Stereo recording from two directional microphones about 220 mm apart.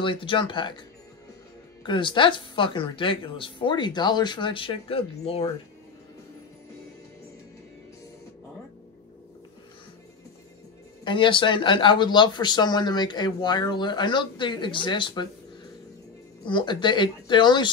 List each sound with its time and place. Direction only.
0.0 s speech: 25° left (ahead or behind)
1.8 s speech: 20° left (ahead or behind)
11.1 s speech: 20° left (ahead or behind)
16.4 s speech: 20° left (ahead or behind)